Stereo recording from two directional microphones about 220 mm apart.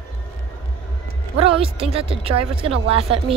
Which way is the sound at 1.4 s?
25° right (ahead or behind).